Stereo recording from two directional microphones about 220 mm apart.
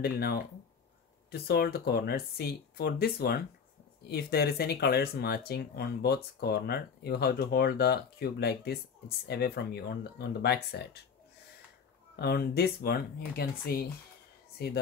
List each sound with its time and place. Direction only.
0.0 s speech: 45° left (ahead or behind)
12.2 s speech: 45° left (ahead or behind)